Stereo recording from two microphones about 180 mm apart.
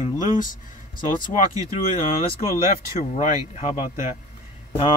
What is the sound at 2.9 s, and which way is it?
Speech, 35° left (ahead or behind).